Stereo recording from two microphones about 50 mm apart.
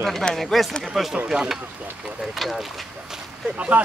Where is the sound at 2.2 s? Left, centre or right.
Centre.